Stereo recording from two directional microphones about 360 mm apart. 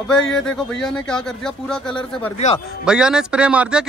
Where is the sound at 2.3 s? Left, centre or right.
Centre.